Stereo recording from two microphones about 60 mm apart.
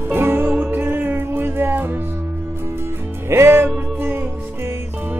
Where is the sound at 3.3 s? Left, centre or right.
Right.